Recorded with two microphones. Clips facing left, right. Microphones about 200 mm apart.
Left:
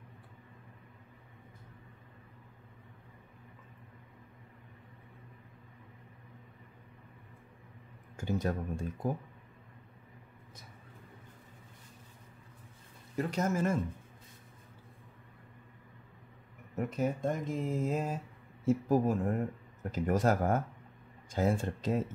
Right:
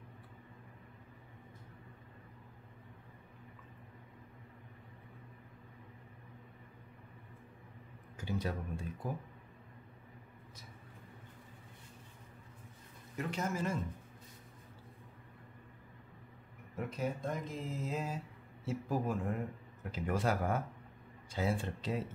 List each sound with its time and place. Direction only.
8.2 s speech: 50° left (ahead or behind)
13.2 s speech: 40° left (ahead or behind)
16.7 s speech: 45° left (ahead or behind)